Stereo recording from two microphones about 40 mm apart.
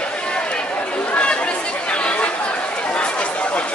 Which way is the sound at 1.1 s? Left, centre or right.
Left.